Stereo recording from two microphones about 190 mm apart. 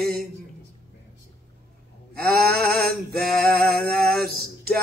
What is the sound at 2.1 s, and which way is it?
Sheep, 55° right (ahead or behind).